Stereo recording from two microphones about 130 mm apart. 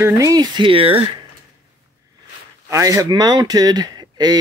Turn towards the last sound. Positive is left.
turn(degrees=-30)  # may be behind; listen again after turning